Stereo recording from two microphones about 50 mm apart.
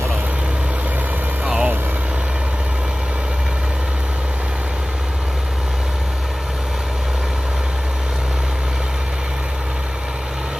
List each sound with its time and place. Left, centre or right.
1.4 s vehicle: centre